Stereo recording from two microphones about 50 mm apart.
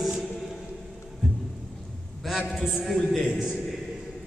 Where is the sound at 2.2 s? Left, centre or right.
Centre.